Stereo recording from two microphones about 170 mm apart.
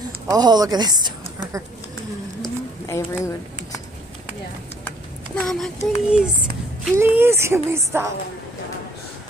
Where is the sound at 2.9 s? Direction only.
15° left (ahead or behind).